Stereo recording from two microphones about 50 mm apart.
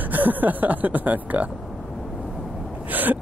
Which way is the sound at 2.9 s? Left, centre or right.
Right.